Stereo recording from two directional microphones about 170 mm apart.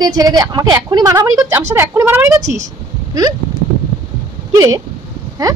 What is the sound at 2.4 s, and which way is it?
Speech, 45° right (ahead or behind).